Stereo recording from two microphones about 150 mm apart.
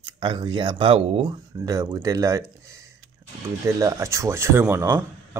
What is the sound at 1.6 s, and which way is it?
Speech, 20° right (ahead or behind).